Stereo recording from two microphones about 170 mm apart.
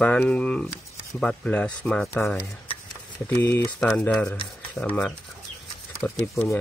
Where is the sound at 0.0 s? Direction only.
5° left (ahead or behind).